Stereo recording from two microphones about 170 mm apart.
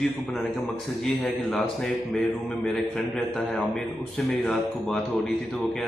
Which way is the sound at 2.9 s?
Centre (ahead or behind).